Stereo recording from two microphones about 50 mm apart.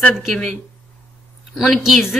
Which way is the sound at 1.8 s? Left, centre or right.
Centre.